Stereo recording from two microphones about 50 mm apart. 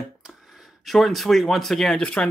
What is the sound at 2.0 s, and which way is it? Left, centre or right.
Speech, left.